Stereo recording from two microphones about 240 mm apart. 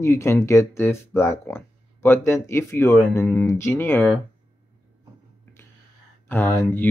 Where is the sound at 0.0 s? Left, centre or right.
Centre.